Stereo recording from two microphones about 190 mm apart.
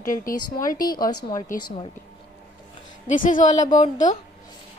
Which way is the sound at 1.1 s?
20° left (ahead or behind).